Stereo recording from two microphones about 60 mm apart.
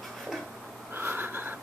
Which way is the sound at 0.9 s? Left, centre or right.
Right.